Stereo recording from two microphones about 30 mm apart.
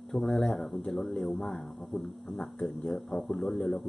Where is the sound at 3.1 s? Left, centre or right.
Centre.